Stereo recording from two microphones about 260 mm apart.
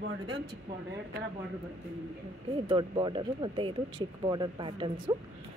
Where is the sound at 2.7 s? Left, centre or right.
Centre.